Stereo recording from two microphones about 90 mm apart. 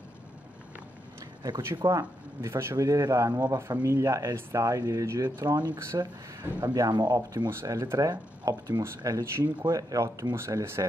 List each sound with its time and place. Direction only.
1.9 s speech: 35° right (ahead or behind)